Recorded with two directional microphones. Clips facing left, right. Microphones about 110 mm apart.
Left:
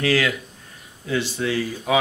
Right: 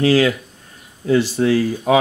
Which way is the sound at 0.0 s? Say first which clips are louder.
Right 6 dB; 30° right (ahead or behind).